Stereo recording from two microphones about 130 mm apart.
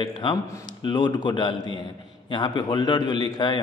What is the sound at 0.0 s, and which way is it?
A man's voice, 35° left (ahead or behind).